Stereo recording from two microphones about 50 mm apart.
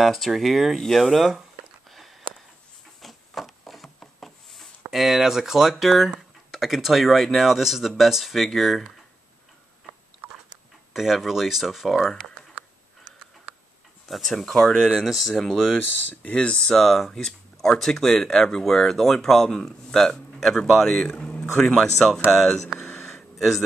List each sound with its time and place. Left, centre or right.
0.0 s speech: centre
1.9 s a sound: centre
4.9 s speech: centre
10.9 s speech: centre
14.0 s speech: centre
15.8 s speech: left
16.7 s speech: centre
21.2 s speech: centre
22.9 s a sound: centre
23.3 s a man's voice: centre